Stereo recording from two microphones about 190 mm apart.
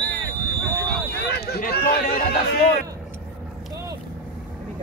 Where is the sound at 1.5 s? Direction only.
55° left (ahead or behind).